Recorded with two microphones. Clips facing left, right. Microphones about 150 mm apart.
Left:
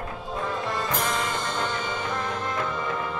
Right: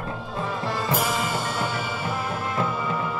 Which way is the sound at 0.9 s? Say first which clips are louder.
Right 2 dB; 5° right (ahead or behind).